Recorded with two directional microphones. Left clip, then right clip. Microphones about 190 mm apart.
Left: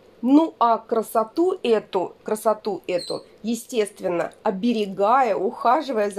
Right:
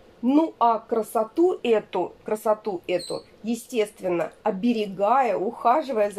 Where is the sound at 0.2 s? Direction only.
40° left (ahead or behind).